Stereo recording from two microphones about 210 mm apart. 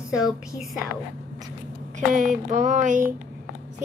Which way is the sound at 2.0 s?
35° right (ahead or behind).